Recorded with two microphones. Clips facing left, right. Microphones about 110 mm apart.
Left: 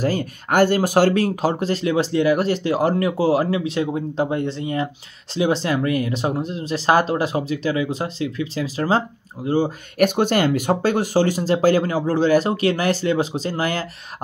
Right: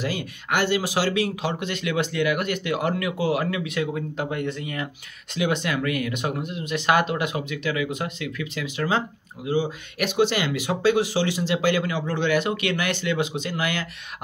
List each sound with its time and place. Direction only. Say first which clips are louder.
0.0 s speech: left 7 dB; 45° left (ahead or behind)